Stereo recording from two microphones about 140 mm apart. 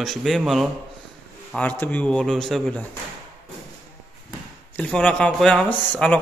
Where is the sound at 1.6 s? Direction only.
10° left (ahead or behind).